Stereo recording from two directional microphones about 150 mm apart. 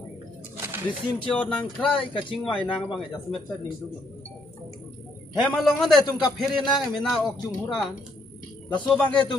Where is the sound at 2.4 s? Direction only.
35° left (ahead or behind).